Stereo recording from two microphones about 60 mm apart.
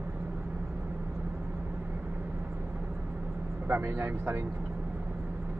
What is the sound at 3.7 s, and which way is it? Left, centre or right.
Speech, right.